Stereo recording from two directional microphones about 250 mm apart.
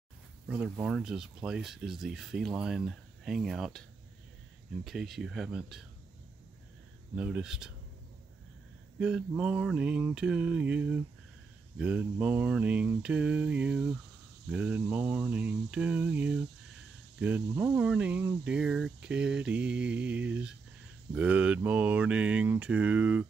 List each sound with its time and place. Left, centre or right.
0.5 s speech: centre
4.8 s speech: centre
7.2 s speech: centre
9.0 s speech: centre